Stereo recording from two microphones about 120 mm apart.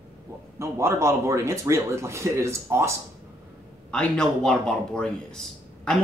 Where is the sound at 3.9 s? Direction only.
5° left (ahead or behind).